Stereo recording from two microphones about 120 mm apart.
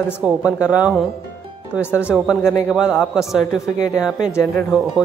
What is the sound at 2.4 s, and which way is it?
Speech, 20° left (ahead or behind).